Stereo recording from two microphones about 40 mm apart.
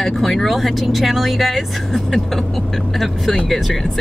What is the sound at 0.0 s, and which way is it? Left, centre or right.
Speech, centre.